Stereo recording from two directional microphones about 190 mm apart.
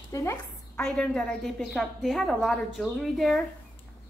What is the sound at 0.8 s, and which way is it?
A woman's voice, centre (ahead or behind).